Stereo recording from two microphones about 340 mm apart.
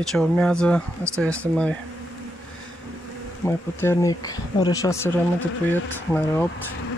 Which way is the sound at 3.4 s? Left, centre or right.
Centre.